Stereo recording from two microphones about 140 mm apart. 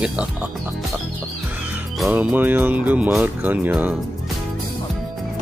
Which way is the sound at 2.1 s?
10° right (ahead or behind).